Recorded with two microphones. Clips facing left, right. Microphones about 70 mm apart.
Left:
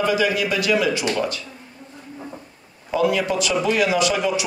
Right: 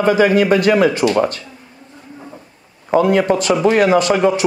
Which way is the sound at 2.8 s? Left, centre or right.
Right.